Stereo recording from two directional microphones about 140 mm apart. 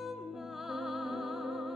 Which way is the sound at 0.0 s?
Centre (ahead or behind).